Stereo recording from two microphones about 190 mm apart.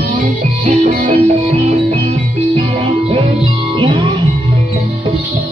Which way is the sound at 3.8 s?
25° right (ahead or behind).